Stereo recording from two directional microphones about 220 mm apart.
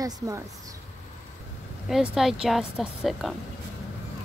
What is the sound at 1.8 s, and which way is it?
A woman's voice, centre (ahead or behind).